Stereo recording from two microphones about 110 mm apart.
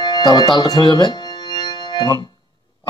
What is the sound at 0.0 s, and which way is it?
Music, 40° left (ahead or behind).